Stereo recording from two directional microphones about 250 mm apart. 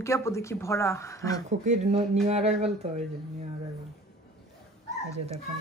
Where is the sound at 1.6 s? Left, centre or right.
Right.